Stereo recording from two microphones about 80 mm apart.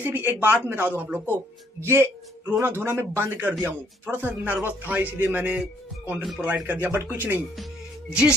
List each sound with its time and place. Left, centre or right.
0.0 s a man's voice: right
8.1 s speech: centre